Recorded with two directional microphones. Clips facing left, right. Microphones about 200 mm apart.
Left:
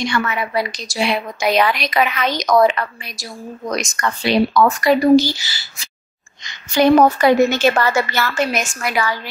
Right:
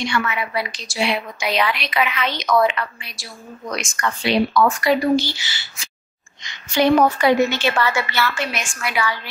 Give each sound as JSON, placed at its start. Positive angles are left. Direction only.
{"t": 0.0, "sound": "a woman's voice", "side_deg": 40}